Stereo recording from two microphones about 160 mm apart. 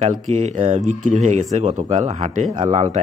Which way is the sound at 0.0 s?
45° right (ahead or behind).